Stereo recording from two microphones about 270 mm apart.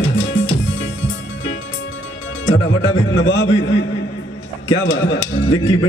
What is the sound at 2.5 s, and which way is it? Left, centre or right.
A man's voice, left.